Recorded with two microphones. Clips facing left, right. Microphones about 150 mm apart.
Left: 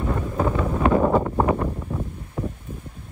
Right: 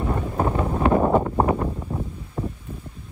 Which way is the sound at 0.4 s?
30° right (ahead or behind).